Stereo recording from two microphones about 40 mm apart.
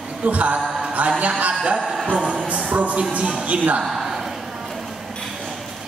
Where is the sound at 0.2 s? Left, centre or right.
Right.